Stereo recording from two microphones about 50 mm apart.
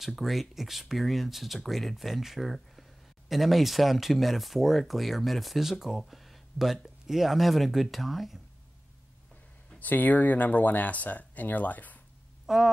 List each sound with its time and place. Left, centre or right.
0.0 s speech: centre
9.8 s speech: left
12.5 s speech: centre